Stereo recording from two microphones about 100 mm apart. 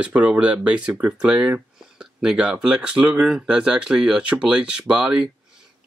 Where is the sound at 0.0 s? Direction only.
15° right (ahead or behind).